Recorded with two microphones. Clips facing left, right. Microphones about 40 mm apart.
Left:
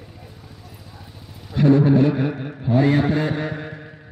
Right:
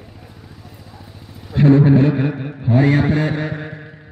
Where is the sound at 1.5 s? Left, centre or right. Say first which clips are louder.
Right 3 dB; right.